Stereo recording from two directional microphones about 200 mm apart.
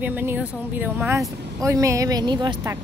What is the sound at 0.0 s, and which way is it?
Speech, 10° right (ahead or behind).